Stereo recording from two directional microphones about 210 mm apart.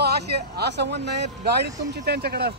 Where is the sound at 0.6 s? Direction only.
55° right (ahead or behind).